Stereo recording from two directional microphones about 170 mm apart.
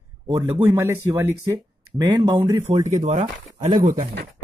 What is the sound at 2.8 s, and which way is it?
Speech, 45° right (ahead or behind).